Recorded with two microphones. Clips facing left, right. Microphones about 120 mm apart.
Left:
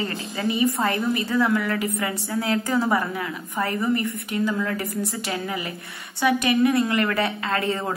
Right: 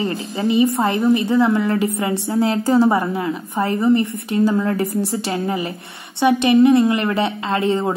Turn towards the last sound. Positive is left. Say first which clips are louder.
# right 6 dB
turn(degrees=-25)  # may be behind; listen again after turning